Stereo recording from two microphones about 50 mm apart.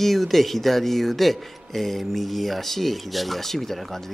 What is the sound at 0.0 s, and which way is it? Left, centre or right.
Speech, centre.